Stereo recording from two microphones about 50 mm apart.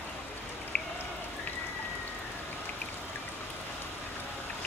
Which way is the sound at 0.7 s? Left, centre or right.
Left.